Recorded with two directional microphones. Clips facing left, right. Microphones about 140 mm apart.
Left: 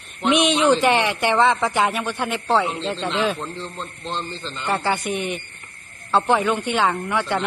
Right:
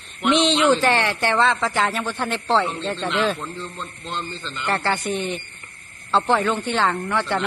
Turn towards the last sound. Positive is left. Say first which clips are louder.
# even
turn(degrees=10)  # may be behind; listen again after turning